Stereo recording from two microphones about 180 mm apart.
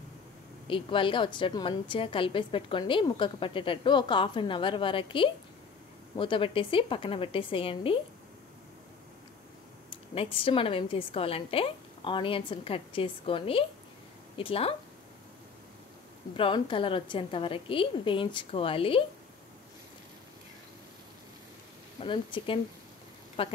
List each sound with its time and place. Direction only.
0.7 s a woman's voice: 30° left (ahead or behind)
9.8 s a woman's voice: 30° left (ahead or behind)
16.3 s a woman's voice: 30° left (ahead or behind)
22.0 s a woman's voice: 30° left (ahead or behind)